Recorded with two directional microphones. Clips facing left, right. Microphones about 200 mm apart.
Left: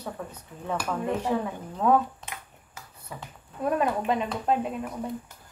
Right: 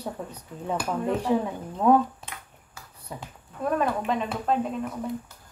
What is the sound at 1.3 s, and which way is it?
Speech, 15° right (ahead or behind).